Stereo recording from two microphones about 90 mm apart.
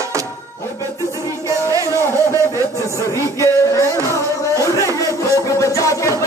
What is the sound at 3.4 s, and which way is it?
Music, 35° left (ahead or behind).